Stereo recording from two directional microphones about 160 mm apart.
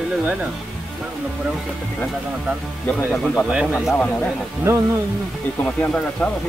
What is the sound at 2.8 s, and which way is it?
Speech, 10° left (ahead or behind).